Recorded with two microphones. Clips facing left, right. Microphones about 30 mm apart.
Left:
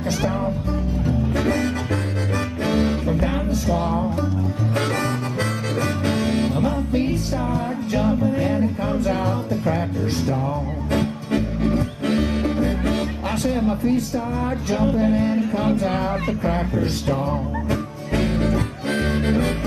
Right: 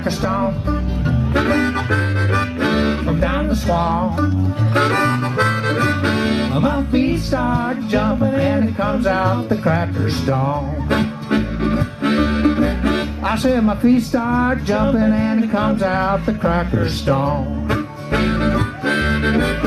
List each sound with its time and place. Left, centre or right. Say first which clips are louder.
1.0 s music: right 4 dB; right
13.5 s speech: right 6 dB; right
14.9 s music: right 2 dB; right